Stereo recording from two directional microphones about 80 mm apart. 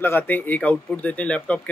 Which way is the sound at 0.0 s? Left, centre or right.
Left.